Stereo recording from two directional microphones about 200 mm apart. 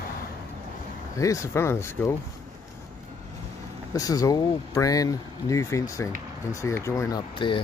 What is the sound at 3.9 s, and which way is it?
Speech, 15° left (ahead or behind).